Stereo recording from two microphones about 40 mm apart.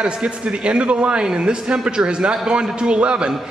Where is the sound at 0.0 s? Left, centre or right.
Right.